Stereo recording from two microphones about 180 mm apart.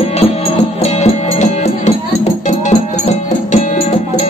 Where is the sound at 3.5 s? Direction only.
40° left (ahead or behind).